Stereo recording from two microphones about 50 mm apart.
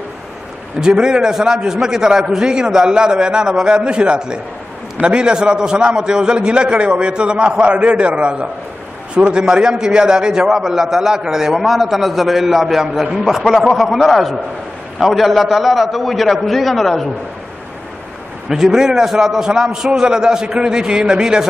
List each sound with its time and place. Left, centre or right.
0.7 s a man's voice: centre
18.5 s a man's voice: centre